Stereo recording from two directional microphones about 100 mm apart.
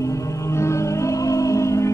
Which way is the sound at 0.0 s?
30° left (ahead or behind).